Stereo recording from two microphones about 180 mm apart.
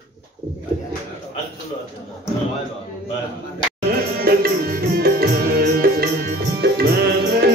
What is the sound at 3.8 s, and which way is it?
Music, 55° right (ahead or behind).